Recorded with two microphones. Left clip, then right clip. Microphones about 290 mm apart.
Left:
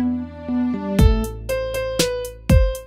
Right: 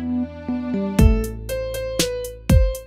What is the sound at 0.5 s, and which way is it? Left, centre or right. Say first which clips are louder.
Music: left 5 dB; centre.